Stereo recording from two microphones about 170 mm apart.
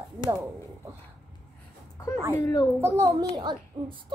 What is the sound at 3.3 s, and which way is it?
Child singing, 25° right (ahead or behind).